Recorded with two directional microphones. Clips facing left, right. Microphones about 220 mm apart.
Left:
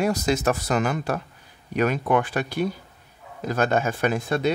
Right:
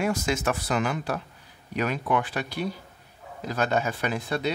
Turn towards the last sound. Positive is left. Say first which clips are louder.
# left 5 dB
turn(degrees=50)  # may be behind; listen again after turning